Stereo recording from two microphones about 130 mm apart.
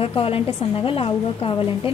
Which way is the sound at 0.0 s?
45° left (ahead or behind).